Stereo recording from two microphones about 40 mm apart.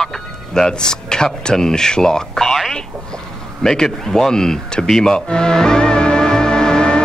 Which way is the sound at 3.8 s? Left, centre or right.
Centre.